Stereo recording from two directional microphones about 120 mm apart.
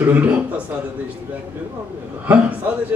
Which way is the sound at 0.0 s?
15° right (ahead or behind).